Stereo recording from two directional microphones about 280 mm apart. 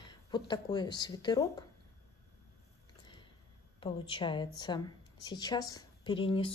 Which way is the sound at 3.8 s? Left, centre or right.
Centre.